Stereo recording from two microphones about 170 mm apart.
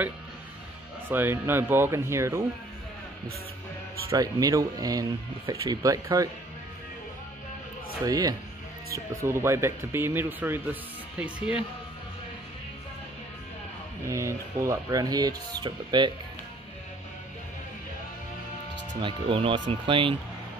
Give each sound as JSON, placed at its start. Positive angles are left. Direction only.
{"t": 1.0, "sound": "speech", "side_deg": -15}
{"t": 4.1, "sound": "speech", "side_deg": -20}
{"t": 8.0, "sound": "speech", "side_deg": -20}
{"t": 14.0, "sound": "speech", "side_deg": -15}
{"t": 18.9, "sound": "speech", "side_deg": -30}